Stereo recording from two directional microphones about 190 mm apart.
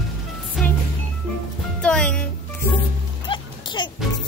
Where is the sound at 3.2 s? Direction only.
25° left (ahead or behind).